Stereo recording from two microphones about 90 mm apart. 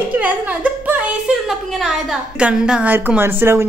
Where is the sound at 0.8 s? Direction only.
20° right (ahead or behind).